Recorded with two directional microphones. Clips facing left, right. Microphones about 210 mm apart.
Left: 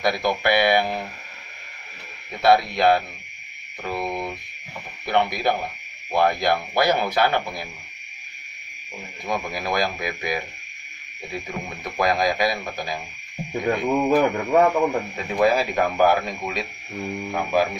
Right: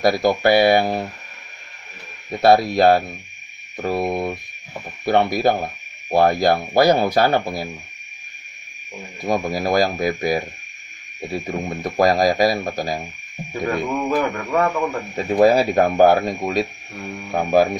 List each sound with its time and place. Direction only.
0.0 s speech: 40° right (ahead or behind)
2.4 s speech: 40° right (ahead or behind)
9.2 s speech: 40° right (ahead or behind)
13.5 s speech: 20° left (ahead or behind)
15.4 s speech: 35° right (ahead or behind)